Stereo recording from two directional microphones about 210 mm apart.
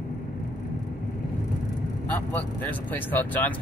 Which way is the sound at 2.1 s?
10° left (ahead or behind).